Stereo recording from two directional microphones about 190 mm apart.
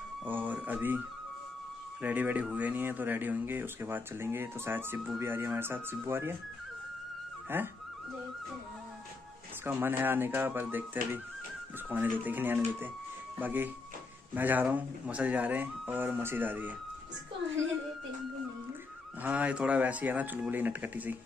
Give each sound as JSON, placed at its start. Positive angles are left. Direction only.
{"t": 0.2, "sound": "speech", "side_deg": -10}
{"t": 7.4, "sound": "speech", "side_deg": -10}
{"t": 9.7, "sound": "speech", "side_deg": -10}
{"t": 11.9, "sound": "speech", "side_deg": -10}
{"t": 19.2, "sound": "speech", "side_deg": -5}